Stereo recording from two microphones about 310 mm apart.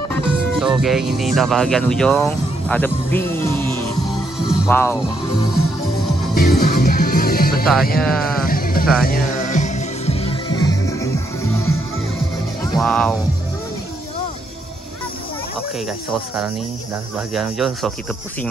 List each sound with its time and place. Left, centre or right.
0.1 s speech: centre
4.4 s music: centre
6.3 s music: left
8.0 s speech: centre
8.5 s music: left; by 11.1 s centre
12.7 s speech: centre
17.3 s speech: centre